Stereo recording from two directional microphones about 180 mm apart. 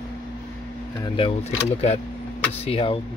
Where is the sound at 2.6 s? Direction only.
30° left (ahead or behind).